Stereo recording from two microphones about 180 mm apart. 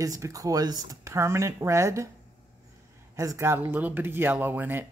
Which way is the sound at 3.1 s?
15° right (ahead or behind).